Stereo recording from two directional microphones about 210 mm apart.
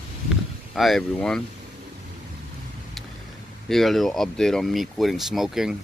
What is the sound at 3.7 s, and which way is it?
Speech, centre (ahead or behind).